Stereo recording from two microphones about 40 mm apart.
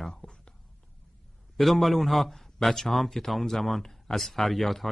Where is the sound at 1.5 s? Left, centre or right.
Centre.